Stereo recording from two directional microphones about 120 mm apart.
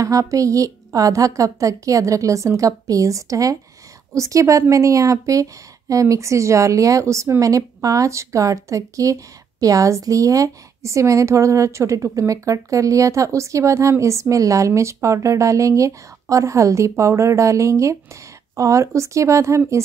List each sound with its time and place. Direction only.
0.0 s a woman's voice: 25° right (ahead or behind)